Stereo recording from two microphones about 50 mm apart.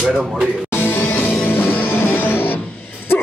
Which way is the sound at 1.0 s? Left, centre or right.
Left.